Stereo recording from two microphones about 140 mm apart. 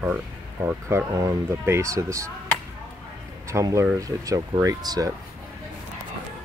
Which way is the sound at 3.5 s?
20° right (ahead or behind).